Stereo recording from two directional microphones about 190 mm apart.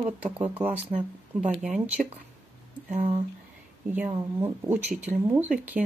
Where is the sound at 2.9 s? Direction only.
40° right (ahead or behind).